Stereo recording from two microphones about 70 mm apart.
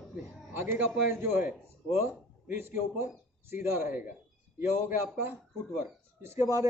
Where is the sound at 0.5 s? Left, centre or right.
Right.